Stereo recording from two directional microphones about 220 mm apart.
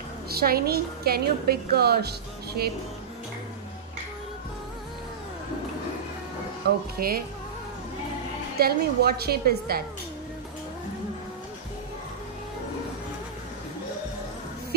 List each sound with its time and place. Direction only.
0.3 s a woman's voice: 45° right (ahead or behind)
7.0 s a woman's voice: 40° right (ahead or behind)
8.5 s a woman's voice: 45° right (ahead or behind)